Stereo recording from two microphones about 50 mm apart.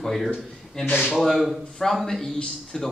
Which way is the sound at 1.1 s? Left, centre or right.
Centre.